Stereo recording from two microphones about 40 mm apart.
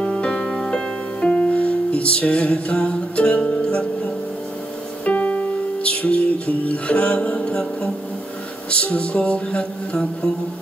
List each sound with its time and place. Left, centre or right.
0.0 s music: left
1.2 s music: left
5.0 s music: left